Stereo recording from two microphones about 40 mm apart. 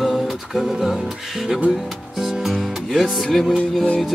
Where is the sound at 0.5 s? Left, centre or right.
Centre.